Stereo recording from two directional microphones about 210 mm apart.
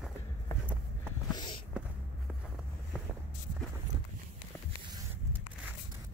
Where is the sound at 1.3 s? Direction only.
20° left (ahead or behind).